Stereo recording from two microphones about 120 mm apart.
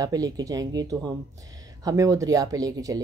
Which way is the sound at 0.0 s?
30° right (ahead or behind).